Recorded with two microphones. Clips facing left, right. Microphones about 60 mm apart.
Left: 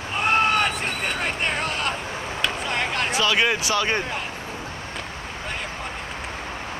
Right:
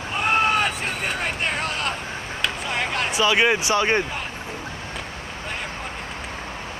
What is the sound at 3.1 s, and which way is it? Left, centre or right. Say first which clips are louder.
Speech: right 3 dB; centre.